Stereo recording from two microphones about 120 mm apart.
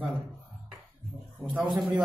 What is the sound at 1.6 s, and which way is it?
Speech, 40° right (ahead or behind).